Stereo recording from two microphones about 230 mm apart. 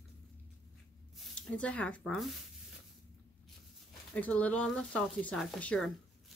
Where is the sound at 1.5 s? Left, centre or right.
Centre.